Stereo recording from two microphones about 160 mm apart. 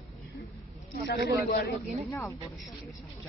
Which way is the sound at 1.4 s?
75° left (ahead or behind).